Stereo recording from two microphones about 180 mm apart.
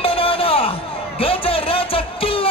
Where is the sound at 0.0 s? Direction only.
30° left (ahead or behind).